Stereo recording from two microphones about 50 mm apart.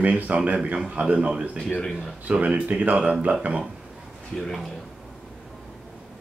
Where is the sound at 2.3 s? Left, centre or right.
Right.